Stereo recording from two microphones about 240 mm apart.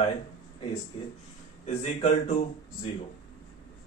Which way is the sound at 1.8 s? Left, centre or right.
Left.